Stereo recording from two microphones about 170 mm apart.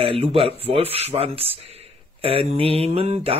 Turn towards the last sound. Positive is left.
turn(degrees=-35)  # may be behind; listen again after turning